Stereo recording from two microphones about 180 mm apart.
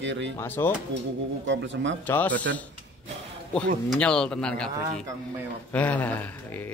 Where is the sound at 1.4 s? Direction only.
90° right.